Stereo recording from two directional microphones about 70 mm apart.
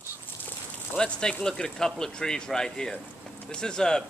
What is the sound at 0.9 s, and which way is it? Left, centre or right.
Speech, centre.